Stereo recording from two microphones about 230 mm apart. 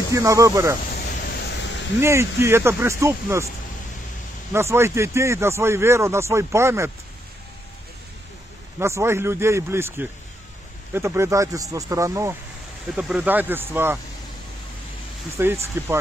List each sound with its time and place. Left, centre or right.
0.1 s speech: centre
1.2 s vehicle: left
2.0 s speech: centre
4.5 s speech: centre
8.7 s speech: centre
15.3 s speech: centre